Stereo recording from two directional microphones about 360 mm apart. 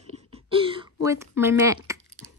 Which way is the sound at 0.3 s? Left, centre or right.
Centre.